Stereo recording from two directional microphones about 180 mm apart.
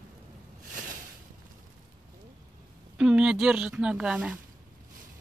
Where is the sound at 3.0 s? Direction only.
5° right (ahead or behind).